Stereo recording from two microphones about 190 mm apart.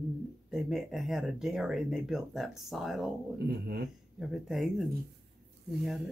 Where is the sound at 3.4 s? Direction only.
55° right (ahead or behind).